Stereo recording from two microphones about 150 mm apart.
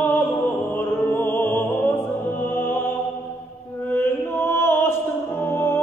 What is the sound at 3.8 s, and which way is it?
Music, 15° left (ahead or behind).